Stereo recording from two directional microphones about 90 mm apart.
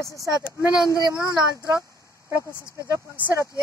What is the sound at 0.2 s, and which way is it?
Speech, 45° right (ahead or behind).